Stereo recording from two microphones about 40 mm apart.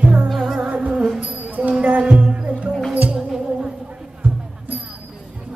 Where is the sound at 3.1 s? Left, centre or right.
Centre.